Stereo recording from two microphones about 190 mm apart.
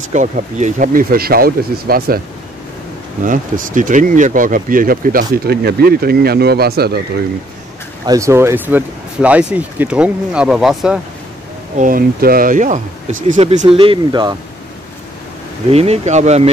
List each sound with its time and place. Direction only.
0.1 s speech: 40° right (ahead or behind); by 7.0 s 55° right (ahead or behind)
8.1 s speech: 15° right (ahead or behind)
11.7 s speech: 45° right (ahead or behind); by 14.3 s 25° right (ahead or behind)
15.7 s speech: 30° right (ahead or behind)